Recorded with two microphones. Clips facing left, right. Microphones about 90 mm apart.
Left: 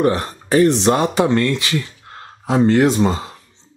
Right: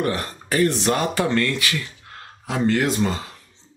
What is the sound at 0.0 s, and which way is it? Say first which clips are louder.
Speech: left 7 dB; 25° left (ahead or behind).